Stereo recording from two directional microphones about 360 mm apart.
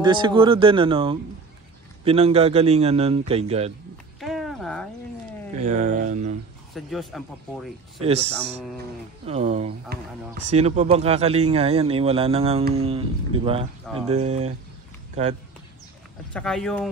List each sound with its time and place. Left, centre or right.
0.0 s speech: centre
4.2 s a sound: centre
5.7 s speech: right
6.7 s speech: centre
8.0 s speech: centre
16.3 s speech: centre